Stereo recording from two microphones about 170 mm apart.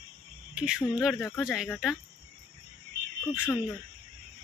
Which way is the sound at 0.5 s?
5° right (ahead or behind).